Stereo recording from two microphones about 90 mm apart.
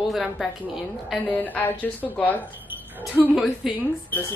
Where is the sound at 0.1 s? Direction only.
Centre (ahead or behind).